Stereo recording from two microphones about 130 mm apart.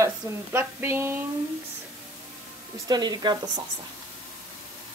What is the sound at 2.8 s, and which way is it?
Speech, 30° right (ahead or behind).